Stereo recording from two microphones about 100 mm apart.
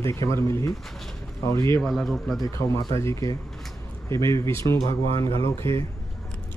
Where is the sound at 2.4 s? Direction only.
30° left (ahead or behind).